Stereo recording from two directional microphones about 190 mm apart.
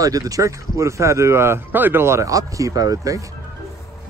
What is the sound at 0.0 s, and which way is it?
Speech, 15° right (ahead or behind).